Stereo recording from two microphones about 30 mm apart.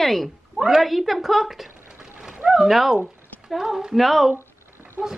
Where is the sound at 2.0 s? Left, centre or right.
Right.